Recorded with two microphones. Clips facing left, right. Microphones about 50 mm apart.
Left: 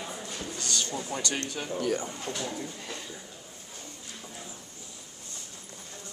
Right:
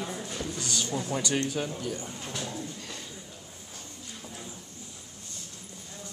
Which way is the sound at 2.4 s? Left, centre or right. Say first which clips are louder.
Left 1 dB; centre.